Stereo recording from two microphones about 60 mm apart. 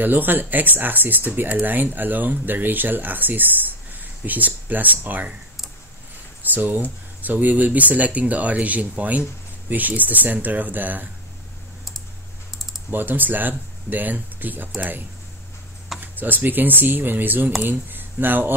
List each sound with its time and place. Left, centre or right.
0.0 s speech: right
6.5 s speech: right
12.9 s speech: right